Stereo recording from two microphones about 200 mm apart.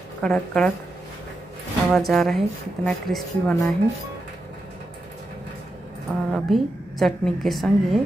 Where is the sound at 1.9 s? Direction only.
Centre (ahead or behind).